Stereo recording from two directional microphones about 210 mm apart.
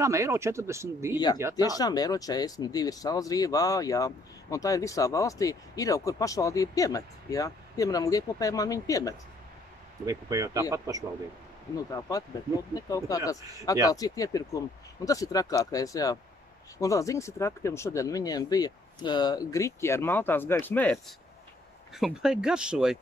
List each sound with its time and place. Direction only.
0.0 s speech: 15° right (ahead or behind)
1.6 s speech: 20° left (ahead or behind)
10.0 s speech: 15° right (ahead or behind)
11.7 s speech: 15° left (ahead or behind)
21.9 s speech: centre (ahead or behind)